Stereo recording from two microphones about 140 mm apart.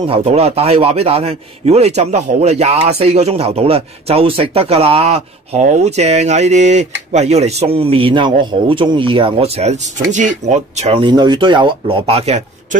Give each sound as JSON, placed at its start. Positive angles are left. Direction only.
{"t": 0.1, "sound": "a man's voice", "side_deg": -50}
{"t": 10.8, "sound": "speech", "side_deg": -45}